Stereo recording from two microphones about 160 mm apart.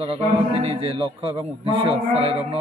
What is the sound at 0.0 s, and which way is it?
A man's voice, 35° right (ahead or behind).